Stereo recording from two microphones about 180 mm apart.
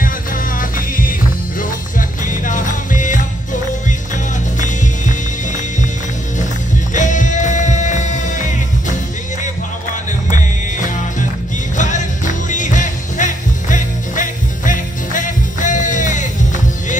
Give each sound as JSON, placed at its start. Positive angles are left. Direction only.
{"t": 0.0, "sound": "music", "side_deg": 50}
{"t": 4.6, "sound": "music", "side_deg": 45}
{"t": 6.9, "sound": "music", "side_deg": 45}
{"t": 10.3, "sound": "music", "side_deg": 45}